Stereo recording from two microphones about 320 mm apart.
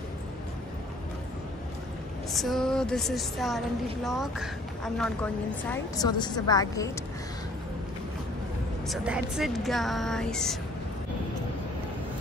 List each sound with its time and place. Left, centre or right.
2.3 s a woman's voice: centre
8.8 s a woman's voice: centre